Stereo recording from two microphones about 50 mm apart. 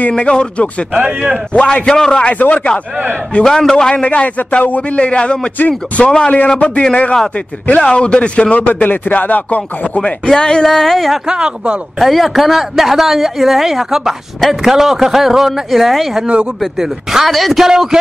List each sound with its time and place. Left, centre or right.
0.1 s speech: centre
0.9 s speech: right
1.5 s speech: centre
3.4 s speech: centre
3.9 s speech: left
10.2 s speech: centre
11.2 s a man's voice: centre
12.0 s a woman's voice: centre